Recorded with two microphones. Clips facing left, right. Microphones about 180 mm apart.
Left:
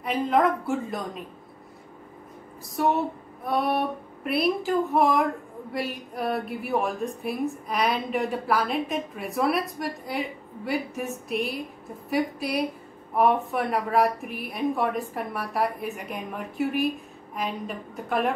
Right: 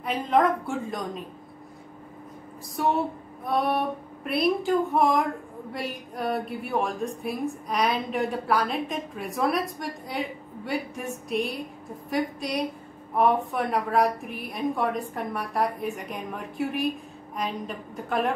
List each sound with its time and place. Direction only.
0.0 s a woman's voice: centre (ahead or behind)
2.7 s a woman's voice: centre (ahead or behind)